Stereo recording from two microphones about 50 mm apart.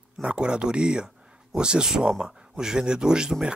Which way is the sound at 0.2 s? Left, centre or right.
Centre.